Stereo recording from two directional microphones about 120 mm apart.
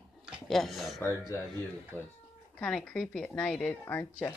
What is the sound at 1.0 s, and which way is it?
A woman's voice, 20° left (ahead or behind).